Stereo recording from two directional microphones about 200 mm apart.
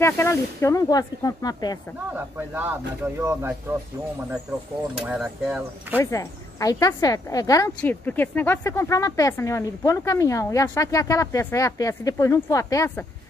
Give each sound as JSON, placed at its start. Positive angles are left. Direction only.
{"t": 0.0, "sound": "speech", "side_deg": 15}
{"t": 2.1, "sound": "speech", "side_deg": -10}
{"t": 5.0, "sound": "speech", "side_deg": -5}
{"t": 5.9, "sound": "speech", "side_deg": 15}